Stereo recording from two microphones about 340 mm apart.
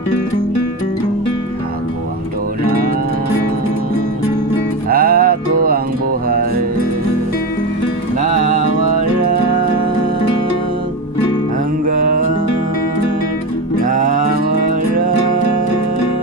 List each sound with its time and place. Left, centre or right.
4.8 s music: right
11.8 s music: right
13.8 s music: right